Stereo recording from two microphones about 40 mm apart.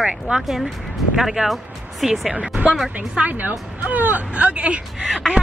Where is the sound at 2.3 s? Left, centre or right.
Right.